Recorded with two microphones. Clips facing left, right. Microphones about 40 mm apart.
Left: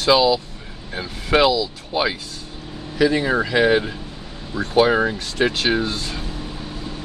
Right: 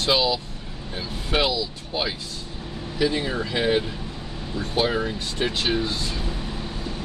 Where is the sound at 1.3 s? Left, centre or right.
Left.